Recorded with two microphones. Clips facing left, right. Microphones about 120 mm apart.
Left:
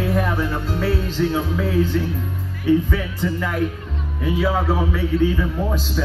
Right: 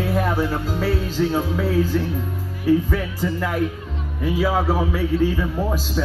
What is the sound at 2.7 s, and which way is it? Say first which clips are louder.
Speech: even; 35° right (ahead or behind).